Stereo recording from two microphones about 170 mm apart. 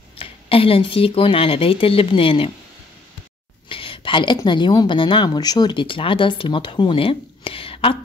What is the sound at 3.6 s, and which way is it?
A woman's voice, 30° left (ahead or behind).